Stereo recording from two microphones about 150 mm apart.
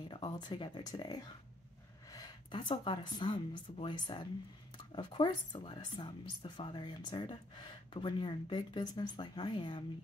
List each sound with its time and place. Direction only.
0.1 s speech: 35° left (ahead or behind)